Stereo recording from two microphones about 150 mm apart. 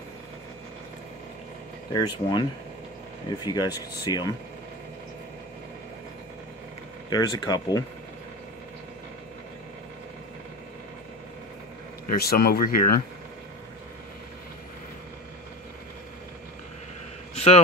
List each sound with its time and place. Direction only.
1.9 s speech: 25° left (ahead or behind)
3.4 s speech: 25° left (ahead or behind)
7.1 s speech: 25° left (ahead or behind)
12.1 s speech: 90° left